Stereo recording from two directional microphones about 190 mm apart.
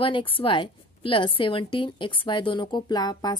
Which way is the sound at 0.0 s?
25° left (ahead or behind).